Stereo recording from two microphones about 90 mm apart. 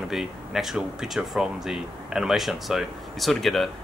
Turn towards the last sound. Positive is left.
turn(degrees=0)  # may be behind; listen again after turning